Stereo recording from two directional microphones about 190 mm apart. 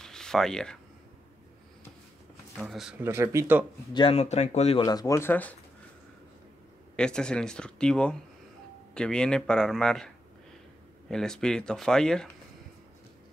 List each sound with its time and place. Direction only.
0.0 s a sound: 5° left (ahead or behind)
2.6 s speech: 5° right (ahead or behind)
3.9 s speech: 30° left (ahead or behind)
4.8 s speech: 20° left (ahead or behind)
7.0 s speech: 5° left (ahead or behind)